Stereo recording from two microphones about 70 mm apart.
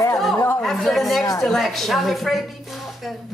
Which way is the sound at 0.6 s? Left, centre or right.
Centre.